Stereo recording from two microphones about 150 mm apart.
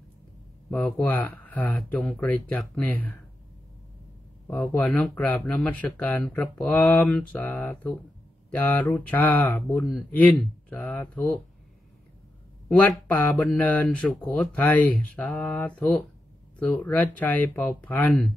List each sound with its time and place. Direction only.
0.7 s speech: 10° left (ahead or behind)
4.5 s speech: 10° left (ahead or behind)
12.6 s speech: 5° left (ahead or behind)